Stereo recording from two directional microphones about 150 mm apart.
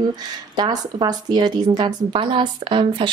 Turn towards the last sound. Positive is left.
turn(degrees=-35)  # may be behind; listen again after turning